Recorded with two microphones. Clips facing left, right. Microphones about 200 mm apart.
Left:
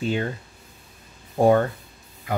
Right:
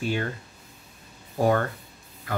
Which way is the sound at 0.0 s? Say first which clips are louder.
Left 3 dB; 20° left (ahead or behind).